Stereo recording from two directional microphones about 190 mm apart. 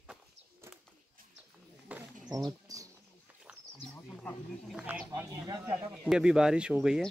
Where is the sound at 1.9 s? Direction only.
5° right (ahead or behind).